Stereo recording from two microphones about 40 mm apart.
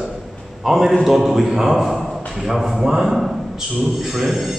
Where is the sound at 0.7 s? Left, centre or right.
Centre.